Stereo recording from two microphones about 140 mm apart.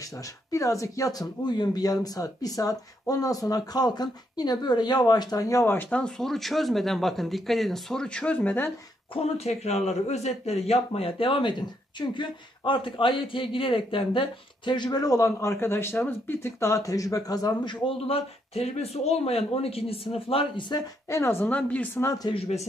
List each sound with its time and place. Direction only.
0.0 s speech: 25° left (ahead or behind)
9.1 s speech: 50° left (ahead or behind); by 17.7 s 25° left (ahead or behind)
17.8 s speech: 45° left (ahead or behind)
21.1 s speech: 20° left (ahead or behind)
22.3 s speech: 50° left (ahead or behind)